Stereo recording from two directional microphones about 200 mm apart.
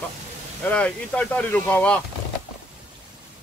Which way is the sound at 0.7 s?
5° left (ahead or behind).